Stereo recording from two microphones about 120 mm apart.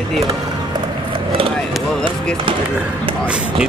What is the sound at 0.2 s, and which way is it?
Music, 30° right (ahead or behind).